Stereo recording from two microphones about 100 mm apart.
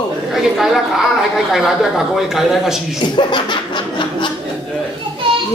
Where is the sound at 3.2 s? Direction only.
50° left (ahead or behind).